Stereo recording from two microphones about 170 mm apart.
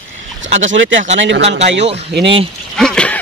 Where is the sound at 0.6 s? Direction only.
90° right.